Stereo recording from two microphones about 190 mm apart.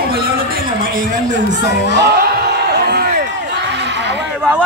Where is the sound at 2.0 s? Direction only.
60° right (ahead or behind).